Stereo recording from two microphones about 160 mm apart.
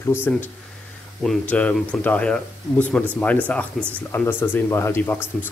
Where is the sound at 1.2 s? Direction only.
10° left (ahead or behind).